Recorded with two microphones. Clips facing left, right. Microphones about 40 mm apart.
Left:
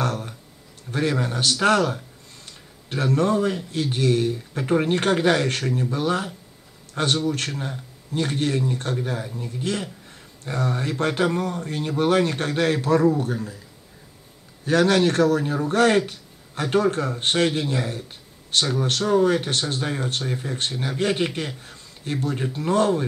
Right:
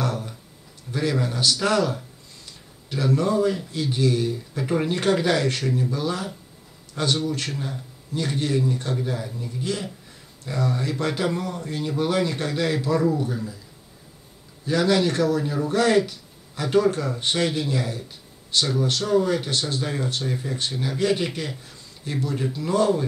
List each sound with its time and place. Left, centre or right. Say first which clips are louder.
0.0 s a sound: left 1 dB; left
1.1 s a man's voice: even; left
14.6 s a man's voice: left 2 dB; left